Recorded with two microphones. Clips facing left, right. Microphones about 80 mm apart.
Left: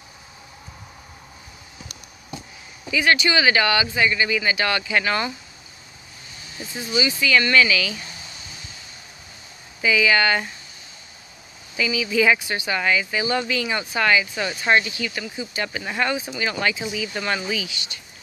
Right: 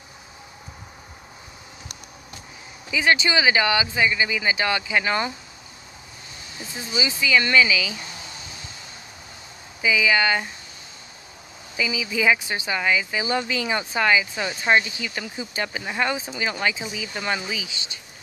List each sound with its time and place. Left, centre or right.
2.9 s speech: right
6.9 s speech: centre
9.8 s speech: centre
11.7 s speech: centre